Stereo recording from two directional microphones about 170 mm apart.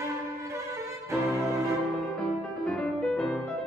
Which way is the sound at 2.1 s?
5° left (ahead or behind).